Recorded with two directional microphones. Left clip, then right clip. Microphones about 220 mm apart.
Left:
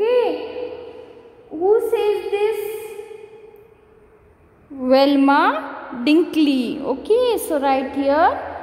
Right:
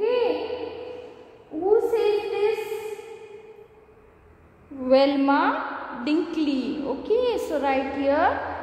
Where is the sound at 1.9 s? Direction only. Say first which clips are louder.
Left 3 dB; 45° left (ahead or behind).